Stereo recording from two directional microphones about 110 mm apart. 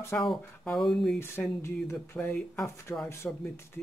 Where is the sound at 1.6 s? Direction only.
25° left (ahead or behind).